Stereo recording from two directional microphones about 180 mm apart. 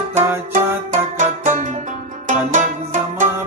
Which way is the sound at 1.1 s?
45° right (ahead or behind).